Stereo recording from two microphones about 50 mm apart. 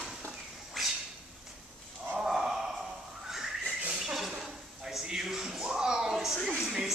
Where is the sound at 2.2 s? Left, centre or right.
Centre.